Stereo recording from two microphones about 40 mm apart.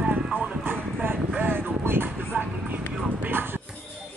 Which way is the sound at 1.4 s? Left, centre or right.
Right.